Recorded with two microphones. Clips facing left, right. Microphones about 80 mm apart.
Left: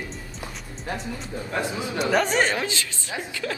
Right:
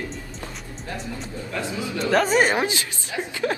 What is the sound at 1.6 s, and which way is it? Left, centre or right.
Speech, left.